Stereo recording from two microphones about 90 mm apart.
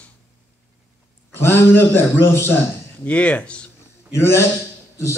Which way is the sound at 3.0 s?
15° left (ahead or behind).